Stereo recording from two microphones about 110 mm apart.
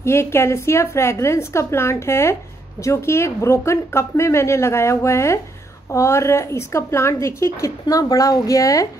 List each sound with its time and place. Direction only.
0.0 s a woman's voice: 25° left (ahead or behind)